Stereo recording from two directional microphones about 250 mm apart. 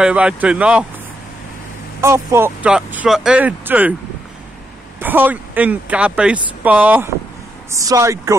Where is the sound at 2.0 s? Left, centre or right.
Centre.